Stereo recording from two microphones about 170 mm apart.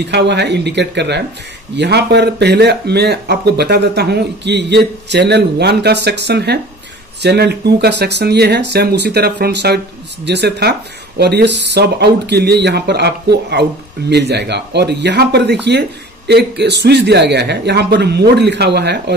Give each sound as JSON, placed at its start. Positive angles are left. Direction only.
{"t": 0.0, "sound": "speech", "side_deg": -90}